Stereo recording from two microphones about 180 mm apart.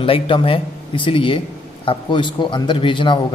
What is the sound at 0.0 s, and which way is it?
A man's voice, 30° left (ahead or behind).